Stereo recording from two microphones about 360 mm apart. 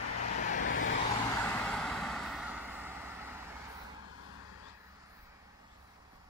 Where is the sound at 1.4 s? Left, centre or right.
Centre.